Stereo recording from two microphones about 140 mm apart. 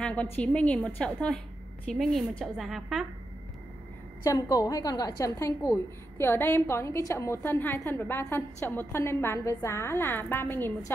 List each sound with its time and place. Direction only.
0.0 s a woman's voice: 10° left (ahead or behind)
4.2 s a woman's voice: 25° left (ahead or behind)